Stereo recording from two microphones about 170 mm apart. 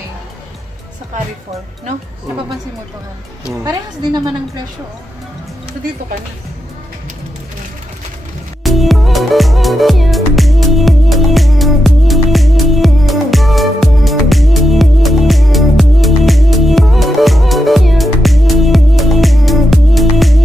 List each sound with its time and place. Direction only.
3.6 s a woman's voice: 25° right (ahead or behind)
8.6 s music: centre (ahead or behind)